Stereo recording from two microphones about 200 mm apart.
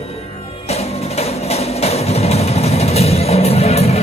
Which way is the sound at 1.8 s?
30° left (ahead or behind).